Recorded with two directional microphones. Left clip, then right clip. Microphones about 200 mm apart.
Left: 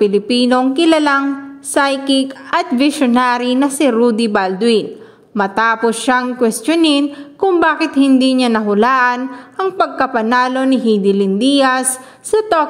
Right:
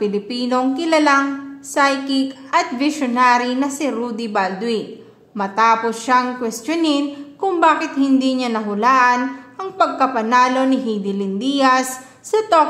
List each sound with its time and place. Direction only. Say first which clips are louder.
0.0 s a woman's voice: left 8 dB; 35° left (ahead or behind)